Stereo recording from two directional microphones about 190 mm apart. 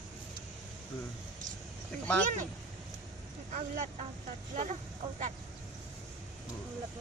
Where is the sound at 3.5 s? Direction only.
40° right (ahead or behind).